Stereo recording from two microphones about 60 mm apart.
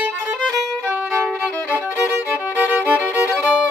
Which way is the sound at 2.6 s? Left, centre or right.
Right.